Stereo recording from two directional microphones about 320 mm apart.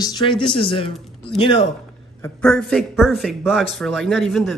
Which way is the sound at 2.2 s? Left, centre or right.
Centre.